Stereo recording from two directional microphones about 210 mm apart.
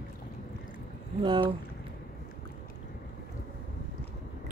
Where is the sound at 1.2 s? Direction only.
25° right (ahead or behind).